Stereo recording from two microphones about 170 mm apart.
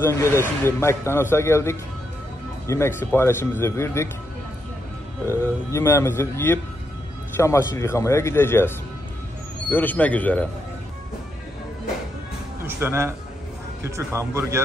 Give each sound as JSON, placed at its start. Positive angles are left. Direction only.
{"t": 0.0, "sound": "speech", "side_deg": 15}
{"t": 5.2, "sound": "speech", "side_deg": 15}
{"t": 12.6, "sound": "speech", "side_deg": -15}